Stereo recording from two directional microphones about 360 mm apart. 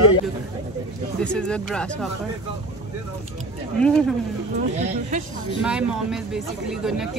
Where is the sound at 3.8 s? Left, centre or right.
Centre.